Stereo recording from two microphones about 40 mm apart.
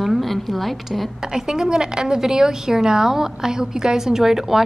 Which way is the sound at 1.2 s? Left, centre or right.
Centre.